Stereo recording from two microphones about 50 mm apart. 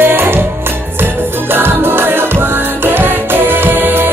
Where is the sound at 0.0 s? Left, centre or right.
Right.